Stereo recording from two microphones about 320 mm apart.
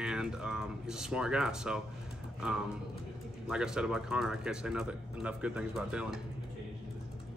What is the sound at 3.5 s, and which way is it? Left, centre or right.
Speech, centre.